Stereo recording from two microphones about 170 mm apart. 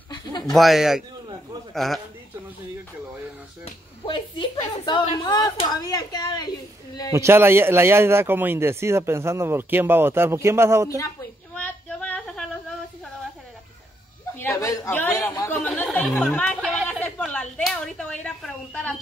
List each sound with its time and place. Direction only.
0.1 s a sound: 25° left (ahead or behind)
0.5 s speech: centre (ahead or behind)
4.0 s speech: 30° left (ahead or behind)
7.2 s speech: 15° right (ahead or behind)
11.5 s female singing: 10° left (ahead or behind)
14.4 s a sound: 15° left (ahead or behind)